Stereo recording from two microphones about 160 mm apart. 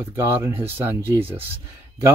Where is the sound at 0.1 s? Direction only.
15° right (ahead or behind).